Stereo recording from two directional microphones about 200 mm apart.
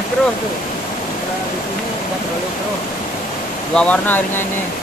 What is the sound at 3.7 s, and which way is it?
Speech, 5° left (ahead or behind).